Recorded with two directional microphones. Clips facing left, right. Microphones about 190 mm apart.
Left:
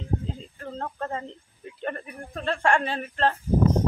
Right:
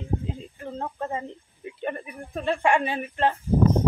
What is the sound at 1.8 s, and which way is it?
Speech, 15° right (ahead or behind).